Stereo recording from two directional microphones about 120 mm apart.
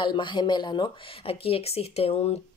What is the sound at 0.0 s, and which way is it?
Speech, 40° left (ahead or behind).